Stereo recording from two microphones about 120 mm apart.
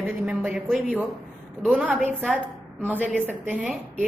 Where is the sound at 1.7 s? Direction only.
10° right (ahead or behind).